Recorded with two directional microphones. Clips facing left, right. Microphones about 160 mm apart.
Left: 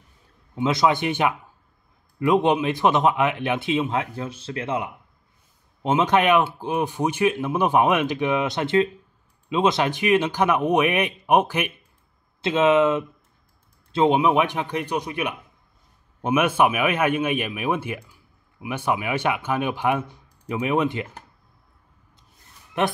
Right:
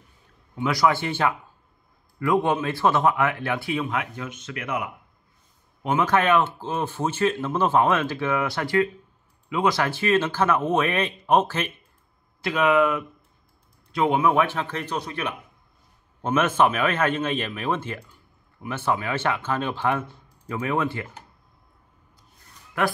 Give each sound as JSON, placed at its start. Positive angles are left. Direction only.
{"t": 0.6, "sound": "a man's voice", "side_deg": 20}
{"t": 22.8, "sound": "a man's voice", "side_deg": 25}